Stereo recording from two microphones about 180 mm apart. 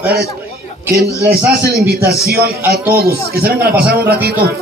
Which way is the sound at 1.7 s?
65° right (ahead or behind).